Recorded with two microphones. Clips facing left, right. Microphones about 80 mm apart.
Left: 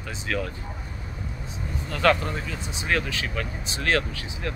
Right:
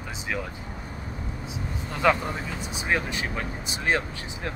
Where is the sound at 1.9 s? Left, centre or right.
Centre.